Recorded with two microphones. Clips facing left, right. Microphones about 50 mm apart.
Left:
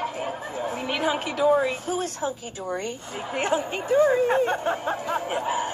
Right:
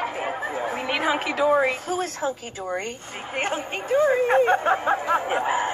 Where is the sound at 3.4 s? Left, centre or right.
Right.